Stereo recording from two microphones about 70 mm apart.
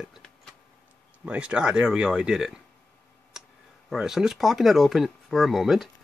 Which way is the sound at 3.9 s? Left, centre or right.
Centre.